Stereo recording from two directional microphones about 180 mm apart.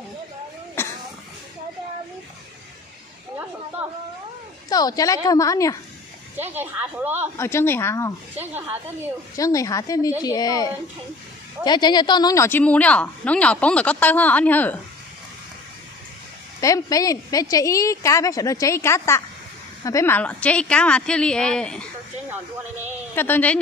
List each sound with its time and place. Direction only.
0.8 s cough: 10° left (ahead or behind)
3.8 s a sound: 5° right (ahead or behind)
4.6 s a woman's voice: 20° left (ahead or behind)
6.5 s a woman's voice: 10° right (ahead or behind)
7.3 s speech: 15° left (ahead or behind)
9.3 s a woman's voice: 20° left (ahead or behind)
16.6 s a woman's voice: 20° left (ahead or behind)
23.1 s speech: 10° left (ahead or behind)